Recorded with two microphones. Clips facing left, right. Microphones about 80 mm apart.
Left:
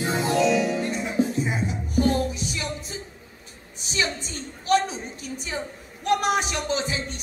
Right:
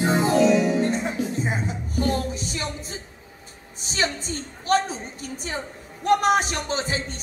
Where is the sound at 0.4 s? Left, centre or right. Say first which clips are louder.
Right 2 dB; right.